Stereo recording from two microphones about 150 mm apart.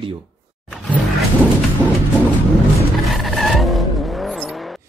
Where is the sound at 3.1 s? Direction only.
Centre (ahead or behind).